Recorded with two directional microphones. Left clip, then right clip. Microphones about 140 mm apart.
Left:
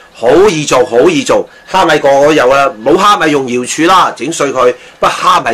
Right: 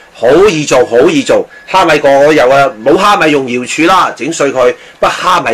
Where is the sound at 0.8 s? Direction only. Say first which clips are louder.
Right 1 dB; 15° right (ahead or behind).